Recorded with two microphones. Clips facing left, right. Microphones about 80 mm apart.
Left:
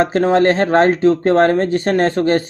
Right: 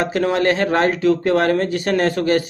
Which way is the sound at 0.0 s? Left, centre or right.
Left.